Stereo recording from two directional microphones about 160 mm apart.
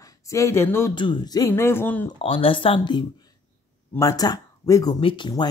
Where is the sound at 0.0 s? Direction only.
20° left (ahead or behind).